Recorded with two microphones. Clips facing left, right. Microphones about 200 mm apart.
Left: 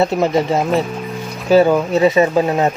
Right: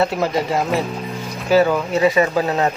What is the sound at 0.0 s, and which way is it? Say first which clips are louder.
Speech: left 4 dB; 25° left (ahead or behind).